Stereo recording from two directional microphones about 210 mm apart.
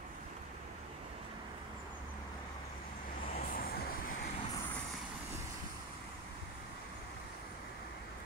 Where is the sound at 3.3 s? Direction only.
40° left (ahead or behind).